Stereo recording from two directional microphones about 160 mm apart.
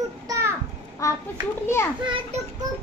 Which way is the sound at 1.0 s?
20° left (ahead or behind).